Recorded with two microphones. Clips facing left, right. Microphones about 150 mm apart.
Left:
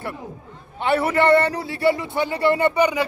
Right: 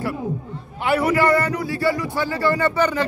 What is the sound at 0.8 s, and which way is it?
A man's voice, 30° left (ahead or behind).